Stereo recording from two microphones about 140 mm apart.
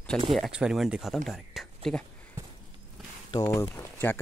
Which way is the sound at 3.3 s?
25° left (ahead or behind).